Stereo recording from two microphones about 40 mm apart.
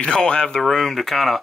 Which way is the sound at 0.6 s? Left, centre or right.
Centre.